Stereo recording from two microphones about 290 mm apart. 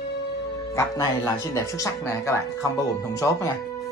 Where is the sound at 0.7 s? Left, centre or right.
Centre.